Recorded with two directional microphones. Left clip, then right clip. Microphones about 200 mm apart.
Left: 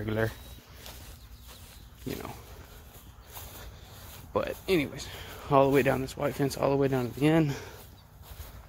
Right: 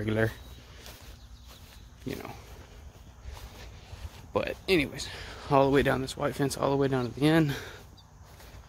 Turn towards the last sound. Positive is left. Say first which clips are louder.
# right 1 dB
turn(degrees=-15)  # may be behind; listen again after turning